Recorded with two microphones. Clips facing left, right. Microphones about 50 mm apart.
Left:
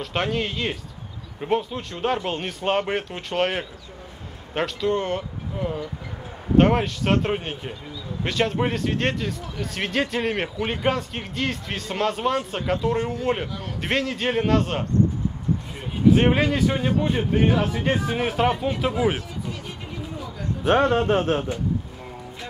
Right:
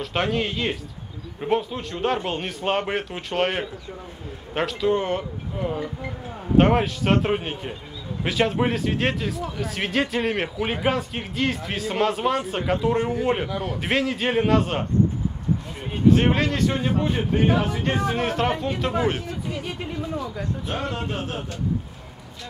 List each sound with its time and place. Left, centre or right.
0.0 s speech: centre
16.1 s speech: centre
20.6 s speech: left